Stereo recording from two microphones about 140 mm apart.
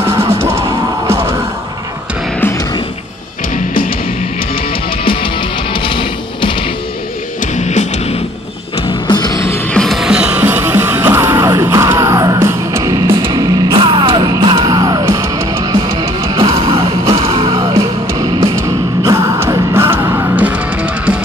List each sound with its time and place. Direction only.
0.0 s music: 15° right (ahead or behind)
5.0 s music: 35° left (ahead or behind)
7.5 s music: 55° left (ahead or behind)
8.8 s music: 35° left (ahead or behind)
9.5 s music: 5° left (ahead or behind); by 13.7 s 25° right (ahead or behind)
13.7 s music: 35° right (ahead or behind); by 21.2 s 10° right (ahead or behind)